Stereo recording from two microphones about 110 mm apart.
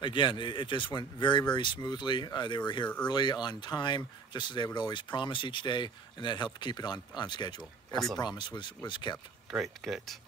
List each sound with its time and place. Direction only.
0.0 s speech: 45° left (ahead or behind)
9.5 s speech: centre (ahead or behind)